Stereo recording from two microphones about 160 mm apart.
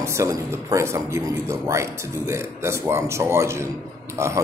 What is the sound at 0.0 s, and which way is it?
Speech, 15° right (ahead or behind).